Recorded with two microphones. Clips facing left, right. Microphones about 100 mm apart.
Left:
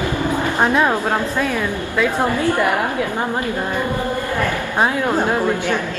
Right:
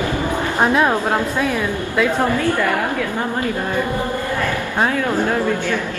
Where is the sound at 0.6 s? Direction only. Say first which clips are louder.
Right 1 dB; 5° right (ahead or behind).